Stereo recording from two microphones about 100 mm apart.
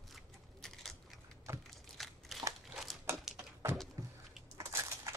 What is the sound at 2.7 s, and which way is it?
Crumpling, centre (ahead or behind).